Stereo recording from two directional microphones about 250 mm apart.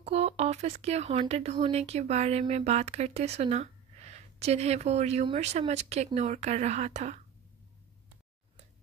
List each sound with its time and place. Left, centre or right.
0.0 s speech: right